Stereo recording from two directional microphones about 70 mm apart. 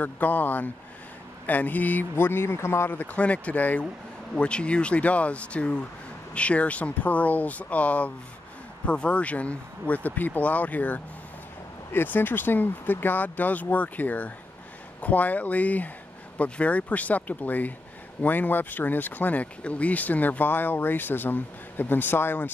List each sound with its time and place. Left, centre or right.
0.0 s speech: left
2.9 s speech: left